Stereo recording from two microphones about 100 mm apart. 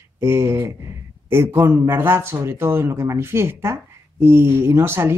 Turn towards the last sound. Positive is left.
turn(degrees=-25)  # may be behind; listen again after turning